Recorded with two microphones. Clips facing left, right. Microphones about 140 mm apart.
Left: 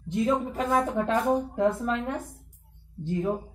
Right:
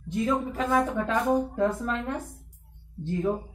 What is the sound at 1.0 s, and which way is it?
A woman's voice, 20° left (ahead or behind).